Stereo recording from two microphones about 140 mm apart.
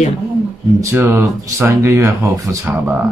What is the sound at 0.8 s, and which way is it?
Speech, 15° right (ahead or behind).